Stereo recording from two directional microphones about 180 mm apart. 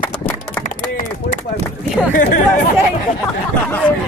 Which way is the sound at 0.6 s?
45° left (ahead or behind).